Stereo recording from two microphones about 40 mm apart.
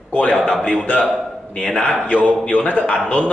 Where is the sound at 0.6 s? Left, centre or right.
Centre.